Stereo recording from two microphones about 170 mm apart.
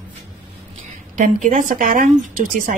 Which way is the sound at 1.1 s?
50° right (ahead or behind).